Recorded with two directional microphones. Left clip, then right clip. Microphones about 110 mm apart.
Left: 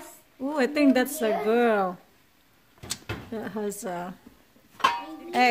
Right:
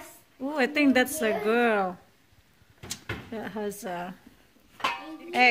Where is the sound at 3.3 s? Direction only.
20° left (ahead or behind).